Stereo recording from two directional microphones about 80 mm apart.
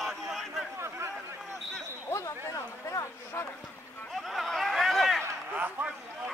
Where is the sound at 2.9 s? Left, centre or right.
Left.